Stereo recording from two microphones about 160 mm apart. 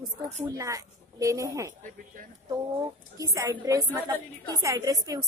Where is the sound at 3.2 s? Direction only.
20° right (ahead or behind).